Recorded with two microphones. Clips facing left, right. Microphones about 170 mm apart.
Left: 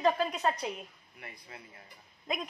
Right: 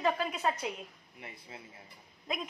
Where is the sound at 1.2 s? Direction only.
25° right (ahead or behind).